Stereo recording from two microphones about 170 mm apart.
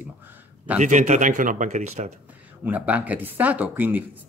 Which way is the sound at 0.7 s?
45° right (ahead or behind).